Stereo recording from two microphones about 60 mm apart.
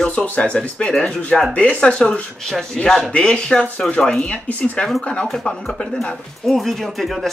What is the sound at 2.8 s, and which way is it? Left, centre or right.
Speech, centre.